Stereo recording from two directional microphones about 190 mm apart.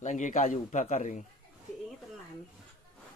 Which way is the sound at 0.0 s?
40° left (ahead or behind).